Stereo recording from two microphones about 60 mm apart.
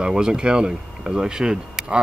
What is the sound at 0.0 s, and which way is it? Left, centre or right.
Speech, centre.